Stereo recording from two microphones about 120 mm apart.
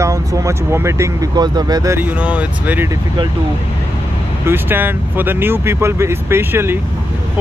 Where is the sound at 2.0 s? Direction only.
15° right (ahead or behind).